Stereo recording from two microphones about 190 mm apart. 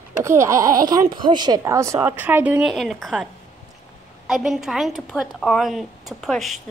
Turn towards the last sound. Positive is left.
turn(degrees=0)  # may be behind; listen again after turning